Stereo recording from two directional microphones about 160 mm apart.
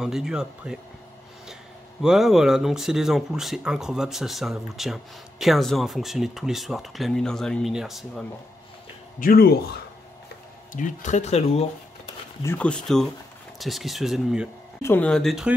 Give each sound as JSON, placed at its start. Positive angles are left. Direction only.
{"t": 0.0, "sound": "speech", "side_deg": -5}
{"t": 9.2, "sound": "speech", "side_deg": 70}
{"t": 10.7, "sound": "speech", "side_deg": 50}
{"t": 12.4, "sound": "speech", "side_deg": 10}
{"t": 14.8, "sound": "speech", "side_deg": 15}
{"t": 15.0, "sound": "speech", "side_deg": 0}